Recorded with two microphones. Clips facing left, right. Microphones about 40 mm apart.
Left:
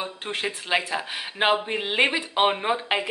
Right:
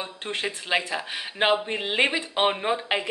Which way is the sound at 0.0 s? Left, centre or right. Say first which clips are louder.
Left 1 dB; centre.